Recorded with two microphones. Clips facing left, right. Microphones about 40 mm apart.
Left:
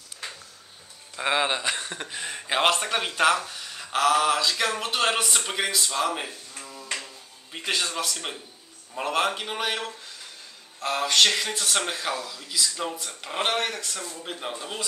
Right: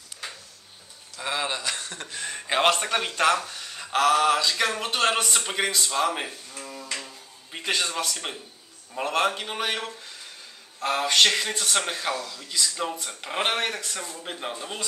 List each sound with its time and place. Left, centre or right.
1.1 s speech: left; by 14.9 s centre